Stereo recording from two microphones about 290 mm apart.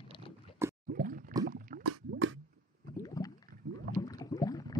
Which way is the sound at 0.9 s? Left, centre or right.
Right.